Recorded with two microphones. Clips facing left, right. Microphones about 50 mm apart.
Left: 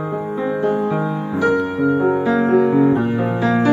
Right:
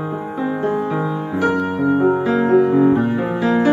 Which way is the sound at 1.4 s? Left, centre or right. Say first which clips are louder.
Left 1 dB; right.